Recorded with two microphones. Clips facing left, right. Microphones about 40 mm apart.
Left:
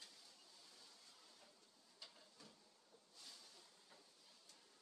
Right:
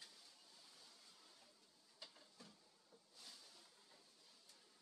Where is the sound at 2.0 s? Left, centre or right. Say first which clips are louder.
Right 1 dB; centre.